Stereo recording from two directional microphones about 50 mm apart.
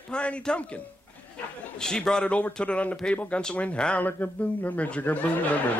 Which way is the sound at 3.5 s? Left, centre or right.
Left.